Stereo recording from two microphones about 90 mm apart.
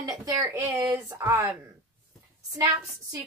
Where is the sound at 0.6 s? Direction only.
20° right (ahead or behind).